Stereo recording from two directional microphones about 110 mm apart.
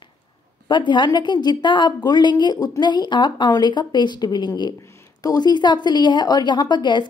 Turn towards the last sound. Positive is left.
turn(degrees=45)  # may be behind; listen again after turning